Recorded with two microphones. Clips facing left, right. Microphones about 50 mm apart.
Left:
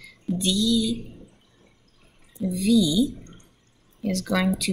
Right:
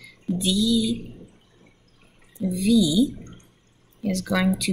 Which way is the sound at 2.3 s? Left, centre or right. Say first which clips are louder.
Right 1 dB; centre.